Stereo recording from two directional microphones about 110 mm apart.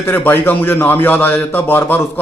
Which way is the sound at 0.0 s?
20° left (ahead or behind).